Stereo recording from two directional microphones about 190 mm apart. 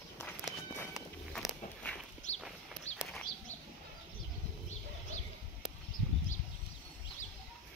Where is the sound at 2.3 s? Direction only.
35° left (ahead or behind).